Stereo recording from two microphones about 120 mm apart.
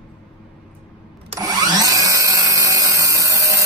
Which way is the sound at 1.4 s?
30° right (ahead or behind).